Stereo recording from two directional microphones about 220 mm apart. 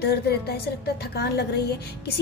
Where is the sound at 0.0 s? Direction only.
45° left (ahead or behind).